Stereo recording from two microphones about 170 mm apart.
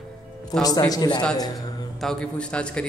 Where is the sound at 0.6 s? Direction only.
20° left (ahead or behind).